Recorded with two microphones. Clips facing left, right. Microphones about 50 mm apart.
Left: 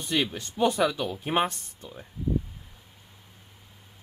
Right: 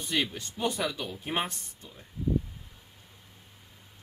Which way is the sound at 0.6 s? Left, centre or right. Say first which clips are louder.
Left 7 dB; left.